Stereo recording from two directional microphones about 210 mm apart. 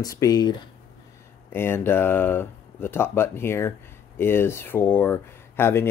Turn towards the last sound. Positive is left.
turn(degrees=10)  # may be behind; listen again after turning